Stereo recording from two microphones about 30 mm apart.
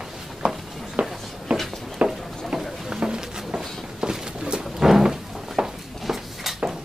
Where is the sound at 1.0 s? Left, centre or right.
Right.